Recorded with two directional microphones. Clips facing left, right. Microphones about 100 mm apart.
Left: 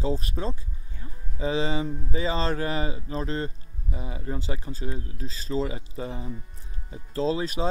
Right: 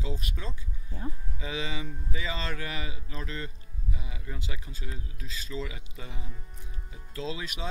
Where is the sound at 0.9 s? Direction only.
40° right (ahead or behind).